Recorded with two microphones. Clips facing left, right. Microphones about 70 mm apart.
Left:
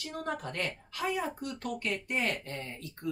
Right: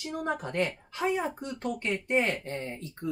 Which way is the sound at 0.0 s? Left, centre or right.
Centre.